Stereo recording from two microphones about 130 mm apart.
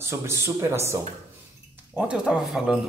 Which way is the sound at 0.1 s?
20° right (ahead or behind).